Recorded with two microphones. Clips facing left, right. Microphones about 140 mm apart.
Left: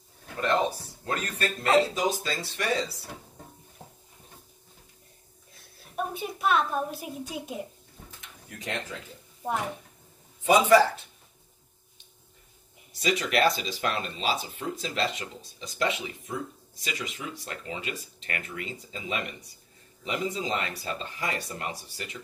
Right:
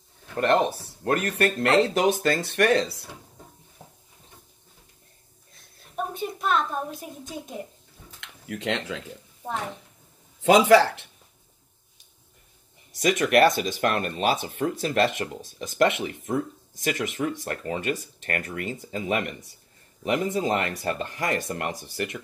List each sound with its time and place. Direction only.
1.0 s speech: 60° right (ahead or behind)
5.5 s a sound: 5° left (ahead or behind)
8.2 s speech: 90° right
10.4 s speech: 90° right
13.0 s speech: 55° right (ahead or behind)